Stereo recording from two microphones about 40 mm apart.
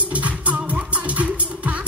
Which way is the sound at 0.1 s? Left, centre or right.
Right.